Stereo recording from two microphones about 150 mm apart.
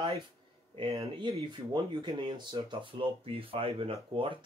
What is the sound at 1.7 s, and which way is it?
Speech, 30° right (ahead or behind).